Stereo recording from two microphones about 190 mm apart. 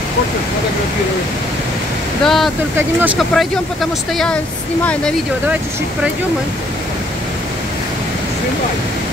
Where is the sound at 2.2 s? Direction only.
Centre (ahead or behind).